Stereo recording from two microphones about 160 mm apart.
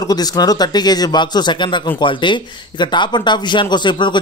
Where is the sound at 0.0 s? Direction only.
25° left (ahead or behind).